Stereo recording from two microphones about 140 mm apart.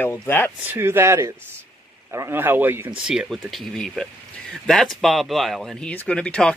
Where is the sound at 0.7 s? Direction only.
15° right (ahead or behind).